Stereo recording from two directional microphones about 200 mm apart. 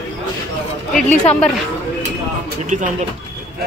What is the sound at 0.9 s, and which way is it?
Speech, 35° left (ahead or behind).